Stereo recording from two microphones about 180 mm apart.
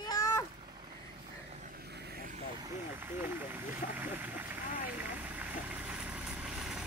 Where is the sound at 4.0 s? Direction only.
10° right (ahead or behind).